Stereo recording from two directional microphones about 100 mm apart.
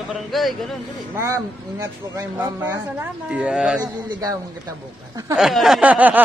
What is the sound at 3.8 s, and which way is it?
Speech, 40° right (ahead or behind).